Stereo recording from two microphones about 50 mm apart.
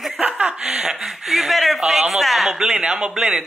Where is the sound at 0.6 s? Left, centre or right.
Centre.